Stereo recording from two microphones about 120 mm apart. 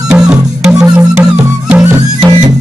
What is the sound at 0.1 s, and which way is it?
Music, 5° right (ahead or behind).